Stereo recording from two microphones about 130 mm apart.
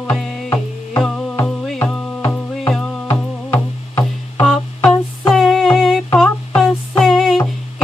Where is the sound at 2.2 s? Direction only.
10° left (ahead or behind).